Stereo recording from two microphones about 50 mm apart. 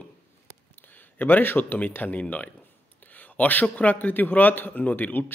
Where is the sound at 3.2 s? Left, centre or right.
Left.